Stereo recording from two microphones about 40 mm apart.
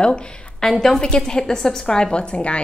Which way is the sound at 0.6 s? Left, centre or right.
Centre.